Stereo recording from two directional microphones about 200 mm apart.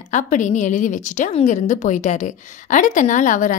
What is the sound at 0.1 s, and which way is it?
A woman's voice, 40° left (ahead or behind).